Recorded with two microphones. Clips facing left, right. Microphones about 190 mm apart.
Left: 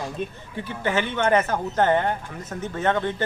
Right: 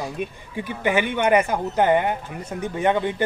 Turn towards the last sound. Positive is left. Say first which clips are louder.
# right 2 dB
turn(degrees=-15)  # may be behind; listen again after turning